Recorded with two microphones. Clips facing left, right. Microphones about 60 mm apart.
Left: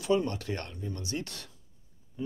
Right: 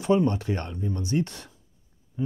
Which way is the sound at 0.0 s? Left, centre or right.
Right.